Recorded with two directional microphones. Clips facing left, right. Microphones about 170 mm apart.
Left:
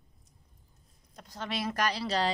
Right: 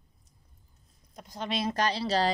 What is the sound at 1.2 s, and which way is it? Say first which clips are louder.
Speech: right 3 dB; 15° right (ahead or behind).